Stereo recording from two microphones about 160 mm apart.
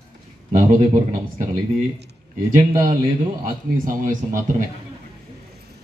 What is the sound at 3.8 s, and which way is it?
Speech, 55° right (ahead or behind).